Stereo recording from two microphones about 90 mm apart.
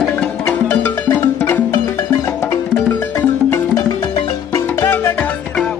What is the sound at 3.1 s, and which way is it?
Music, 30° left (ahead or behind).